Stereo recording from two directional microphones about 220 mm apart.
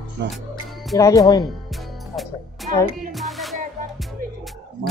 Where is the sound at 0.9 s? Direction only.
15° left (ahead or behind).